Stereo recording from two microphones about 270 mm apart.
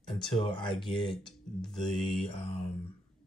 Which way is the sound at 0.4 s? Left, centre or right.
Centre.